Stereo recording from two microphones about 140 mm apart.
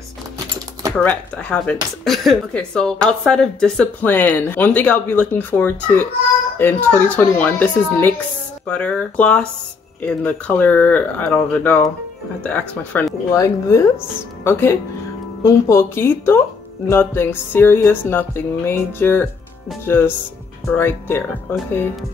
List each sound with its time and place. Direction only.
0.9 s a woman's voice: 5° left (ahead or behind)
13.3 s a woman's voice: 25° left (ahead or behind)
20.7 s a woman's voice: 15° left (ahead or behind)